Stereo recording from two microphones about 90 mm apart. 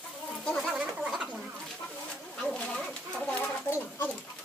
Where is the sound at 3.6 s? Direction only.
30° left (ahead or behind).